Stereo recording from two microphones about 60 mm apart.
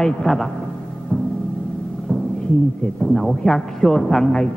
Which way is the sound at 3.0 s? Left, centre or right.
Centre.